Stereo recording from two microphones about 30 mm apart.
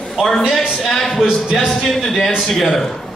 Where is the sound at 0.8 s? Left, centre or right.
Centre.